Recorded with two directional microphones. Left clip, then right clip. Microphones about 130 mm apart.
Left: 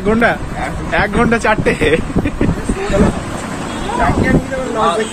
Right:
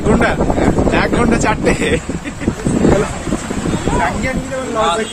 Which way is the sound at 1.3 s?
5° right (ahead or behind).